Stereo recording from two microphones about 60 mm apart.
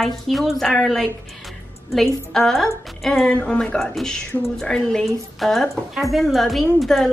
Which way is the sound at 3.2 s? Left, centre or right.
Centre.